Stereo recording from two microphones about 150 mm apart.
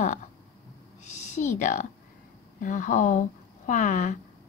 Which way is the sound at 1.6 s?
55° left (ahead or behind).